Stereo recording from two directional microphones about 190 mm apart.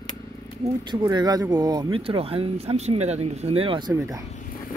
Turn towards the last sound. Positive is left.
turn(degrees=-15)  # may be behind; listen again after turning